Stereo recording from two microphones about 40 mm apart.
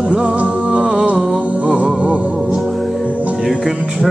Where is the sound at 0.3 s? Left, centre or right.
Right.